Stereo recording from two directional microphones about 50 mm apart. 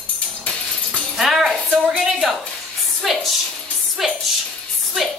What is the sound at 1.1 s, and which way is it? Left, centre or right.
Music, centre.